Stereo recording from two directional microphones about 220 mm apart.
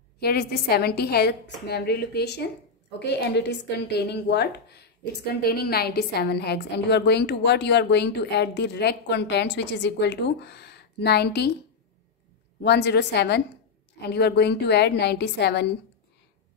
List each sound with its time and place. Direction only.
0.2 s speech: 45° left (ahead or behind)
12.6 s speech: 50° left (ahead or behind)